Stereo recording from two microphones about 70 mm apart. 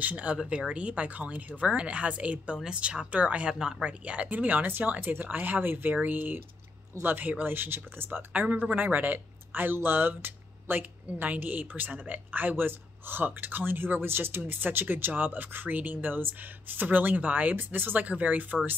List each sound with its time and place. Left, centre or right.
0.0 s speech: centre